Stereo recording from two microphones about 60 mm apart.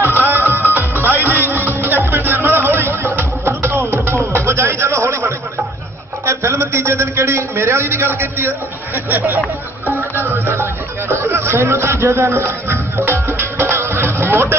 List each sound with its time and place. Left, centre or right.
0.0 s music: right
6.2 s a sound: right
7.8 s a man's voice: right
9.8 s music: right